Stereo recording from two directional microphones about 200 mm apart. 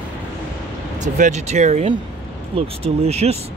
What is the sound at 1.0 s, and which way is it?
Speech, 35° right (ahead or behind).